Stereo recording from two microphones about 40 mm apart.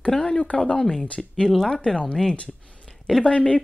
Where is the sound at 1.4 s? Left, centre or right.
Centre.